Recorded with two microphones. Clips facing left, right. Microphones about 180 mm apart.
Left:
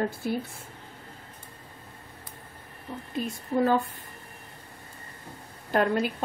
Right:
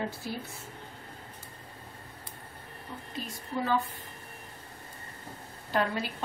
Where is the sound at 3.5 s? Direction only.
50° left (ahead or behind).